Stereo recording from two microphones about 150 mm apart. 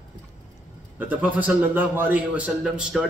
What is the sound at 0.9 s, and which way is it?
A man's voice, 10° right (ahead or behind).